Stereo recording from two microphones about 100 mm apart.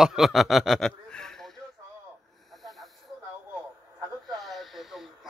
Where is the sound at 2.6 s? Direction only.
Centre (ahead or behind).